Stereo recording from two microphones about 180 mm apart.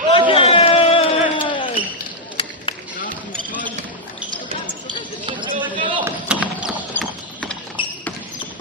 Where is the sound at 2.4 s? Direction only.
30° left (ahead or behind).